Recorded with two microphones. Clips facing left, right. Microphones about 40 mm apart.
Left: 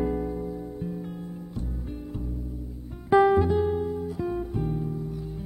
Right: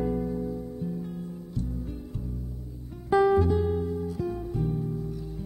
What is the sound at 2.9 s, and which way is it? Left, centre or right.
Guitar, left.